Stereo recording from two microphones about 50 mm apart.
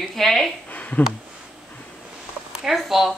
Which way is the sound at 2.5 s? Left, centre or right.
Centre.